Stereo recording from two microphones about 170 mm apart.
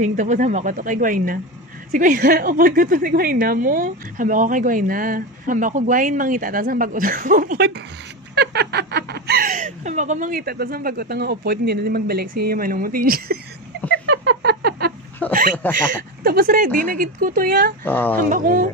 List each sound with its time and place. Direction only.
0.0 s a woman's voice: 45° right (ahead or behind)
8.4 s a woman's voice: 75° right (ahead or behind)
14.0 s a sound: 75° right (ahead or behind)
15.2 s a sound: 10° left (ahead or behind)
15.9 s a woman's voice: 60° right (ahead or behind)
17.8 s speech: 10° left (ahead or behind)
18.3 s a woman's voice: 55° right (ahead or behind)